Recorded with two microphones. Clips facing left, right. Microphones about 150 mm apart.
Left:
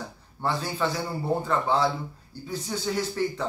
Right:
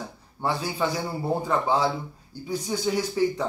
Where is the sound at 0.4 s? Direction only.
15° right (ahead or behind).